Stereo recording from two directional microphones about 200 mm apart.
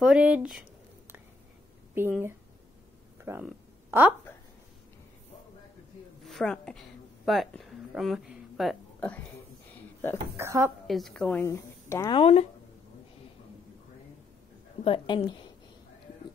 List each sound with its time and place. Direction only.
0.0 s speech: 5° right (ahead or behind)
2.0 s a woman's voice: 10° right (ahead or behind)
3.2 s a sound: 10° right (ahead or behind)
6.2 s a sound: centre (ahead or behind)
10.3 s a woman's voice: 15° right (ahead or behind)
10.9 s a woman's voice: centre (ahead or behind)
12.1 s a woman's voice: 30° left (ahead or behind)
14.9 s a woman's voice: 25° left (ahead or behind)